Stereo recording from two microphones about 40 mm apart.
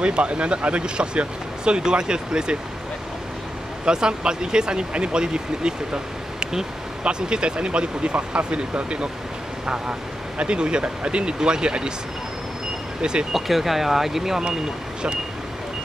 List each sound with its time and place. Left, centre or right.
0.0 s speech: right
3.8 s speech: right
10.3 s speech: right
13.0 s speech: right
13.3 s speech: centre